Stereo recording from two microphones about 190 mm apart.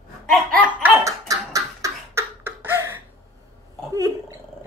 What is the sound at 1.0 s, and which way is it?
Cough, 15° right (ahead or behind).